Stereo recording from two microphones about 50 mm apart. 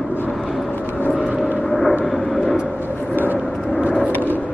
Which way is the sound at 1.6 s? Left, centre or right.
Centre.